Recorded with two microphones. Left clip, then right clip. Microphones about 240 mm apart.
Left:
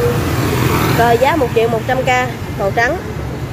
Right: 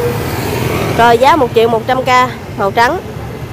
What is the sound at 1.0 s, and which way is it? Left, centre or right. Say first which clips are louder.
Speech: right 6 dB; right.